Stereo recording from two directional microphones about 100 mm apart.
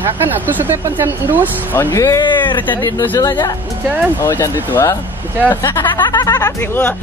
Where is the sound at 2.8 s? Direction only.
20° left (ahead or behind).